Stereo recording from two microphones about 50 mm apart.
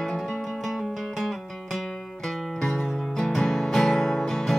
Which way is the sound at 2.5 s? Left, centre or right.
Centre.